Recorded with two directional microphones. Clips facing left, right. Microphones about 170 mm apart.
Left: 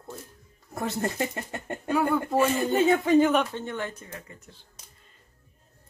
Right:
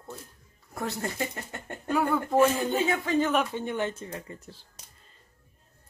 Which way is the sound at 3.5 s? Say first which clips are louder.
Right 3 dB; 20° right (ahead or behind).